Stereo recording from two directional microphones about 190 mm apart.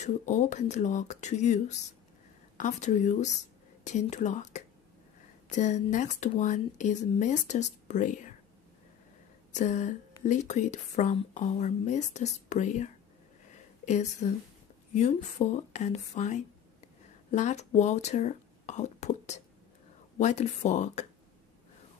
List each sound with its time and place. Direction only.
0.0 s speech: 40° left (ahead or behind)
9.5 s speech: 40° left (ahead or behind)